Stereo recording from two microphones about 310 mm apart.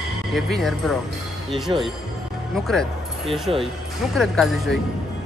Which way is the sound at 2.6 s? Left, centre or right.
Centre.